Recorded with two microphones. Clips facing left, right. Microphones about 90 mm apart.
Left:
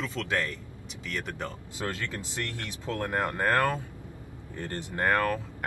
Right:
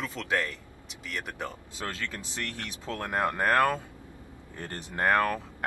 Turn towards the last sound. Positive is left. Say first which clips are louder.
# right 1 dB
turn(degrees=-20)  # may be behind; listen again after turning